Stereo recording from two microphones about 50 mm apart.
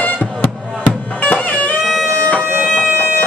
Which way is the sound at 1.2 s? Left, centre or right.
Left.